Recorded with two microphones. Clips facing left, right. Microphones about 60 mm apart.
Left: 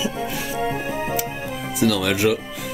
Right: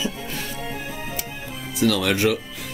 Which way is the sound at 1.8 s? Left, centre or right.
Centre.